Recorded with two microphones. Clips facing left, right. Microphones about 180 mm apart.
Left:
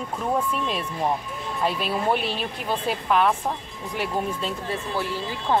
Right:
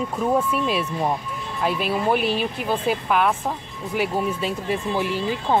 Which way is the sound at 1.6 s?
Centre (ahead or behind).